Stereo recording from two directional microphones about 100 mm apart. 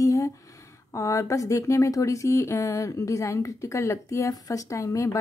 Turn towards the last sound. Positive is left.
turn(degrees=30)  # may be behind; listen again after turning